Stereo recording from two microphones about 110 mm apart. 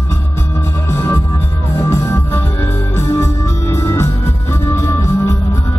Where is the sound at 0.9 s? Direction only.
25° left (ahead or behind).